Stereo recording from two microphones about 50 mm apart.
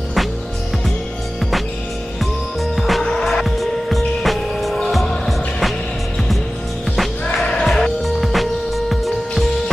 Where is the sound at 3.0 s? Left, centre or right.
Centre.